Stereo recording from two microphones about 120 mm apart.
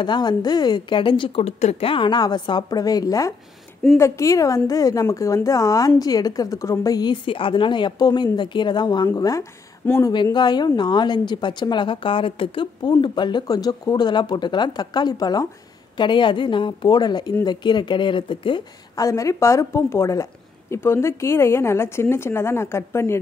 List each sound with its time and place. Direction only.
0.0 s a woman's voice: 40° left (ahead or behind)
1.6 s a woman's voice: 60° left (ahead or behind); by 10.1 s 25° left (ahead or behind)
10.3 s a woman's voice: 35° left (ahead or behind)
18.9 s a woman's voice: 25° left (ahead or behind)